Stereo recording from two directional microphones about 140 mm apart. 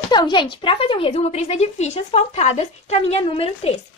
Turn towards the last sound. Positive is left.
turn(degrees=45)  # may be behind; listen again after turning